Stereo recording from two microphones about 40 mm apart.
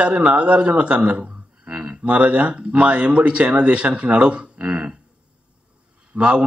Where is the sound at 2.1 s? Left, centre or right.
Right.